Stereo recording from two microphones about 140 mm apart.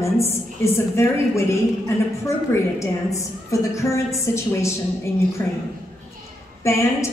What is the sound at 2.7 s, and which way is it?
A woman's voice, 20° left (ahead or behind).